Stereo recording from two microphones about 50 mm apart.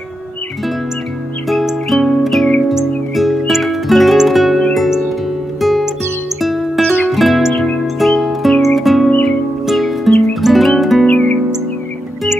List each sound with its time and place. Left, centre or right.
1.5 s music: centre
6.9 s music: centre
11.1 s music: left